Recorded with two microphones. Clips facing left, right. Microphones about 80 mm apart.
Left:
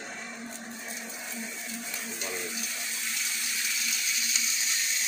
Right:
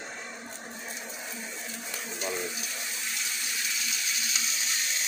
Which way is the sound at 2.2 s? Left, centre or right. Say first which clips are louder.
Right 4 dB; right.